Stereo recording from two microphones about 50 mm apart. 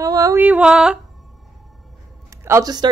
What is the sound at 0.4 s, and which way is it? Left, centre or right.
Speech, right.